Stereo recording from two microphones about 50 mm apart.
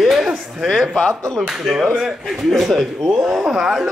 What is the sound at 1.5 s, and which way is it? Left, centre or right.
A man's voice, centre.